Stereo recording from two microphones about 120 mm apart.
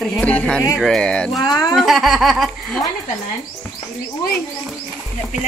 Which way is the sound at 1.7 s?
Centre (ahead or behind).